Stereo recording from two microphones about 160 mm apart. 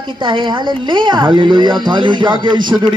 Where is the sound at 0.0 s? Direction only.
30° right (ahead or behind).